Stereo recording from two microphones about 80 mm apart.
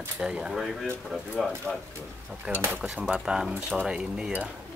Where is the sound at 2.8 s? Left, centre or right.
Centre.